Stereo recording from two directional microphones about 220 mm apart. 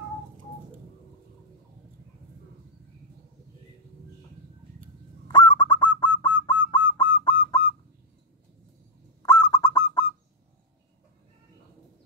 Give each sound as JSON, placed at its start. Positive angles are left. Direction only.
{"t": 5.3, "sound": "honk", "side_deg": 20}
{"t": 6.7, "sound": "a sound", "side_deg": 20}
{"t": 9.2, "sound": "honk", "side_deg": 15}